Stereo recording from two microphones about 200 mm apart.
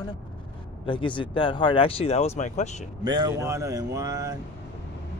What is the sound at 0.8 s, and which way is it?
Speech, 25° left (ahead or behind).